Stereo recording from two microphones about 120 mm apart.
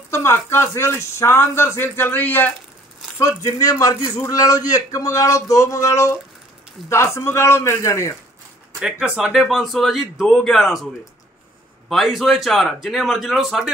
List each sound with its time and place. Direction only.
0.1 s a man's voice: 20° left (ahead or behind)
8.7 s speech: 10° right (ahead or behind)
11.9 s speech: centre (ahead or behind)